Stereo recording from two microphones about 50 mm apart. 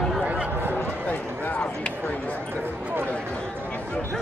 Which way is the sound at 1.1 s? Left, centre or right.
Left.